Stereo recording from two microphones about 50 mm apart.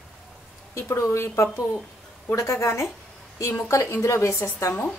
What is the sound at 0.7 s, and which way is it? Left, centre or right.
A woman's voice, left.